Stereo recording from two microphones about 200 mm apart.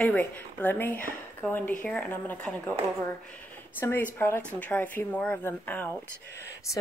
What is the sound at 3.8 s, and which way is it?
Speech, 10° left (ahead or behind).